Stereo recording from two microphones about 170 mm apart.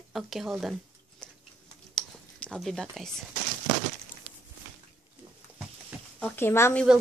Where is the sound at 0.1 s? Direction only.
Centre (ahead or behind).